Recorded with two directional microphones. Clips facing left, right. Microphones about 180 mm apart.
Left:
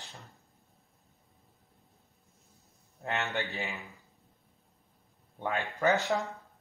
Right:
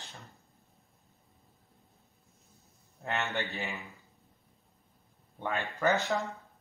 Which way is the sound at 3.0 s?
15° left (ahead or behind).